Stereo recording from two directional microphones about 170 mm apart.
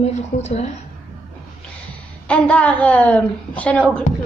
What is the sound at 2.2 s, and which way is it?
A woman's voice, 5° left (ahead or behind).